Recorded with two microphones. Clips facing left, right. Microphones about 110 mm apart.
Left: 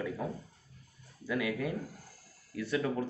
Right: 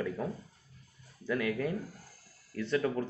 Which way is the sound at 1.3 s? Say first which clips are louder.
Right 1 dB; 15° left (ahead or behind).